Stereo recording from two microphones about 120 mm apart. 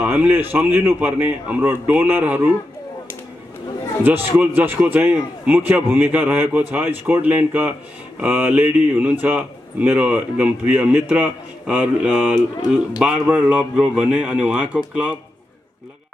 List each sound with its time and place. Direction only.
0.0 s a man's voice: 15° right (ahead or behind)
4.0 s a man's voice: 15° right (ahead or behind)